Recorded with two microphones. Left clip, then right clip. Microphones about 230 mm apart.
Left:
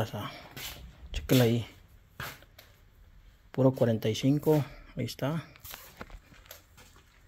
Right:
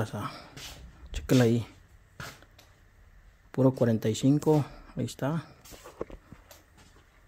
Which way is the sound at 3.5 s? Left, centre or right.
Right.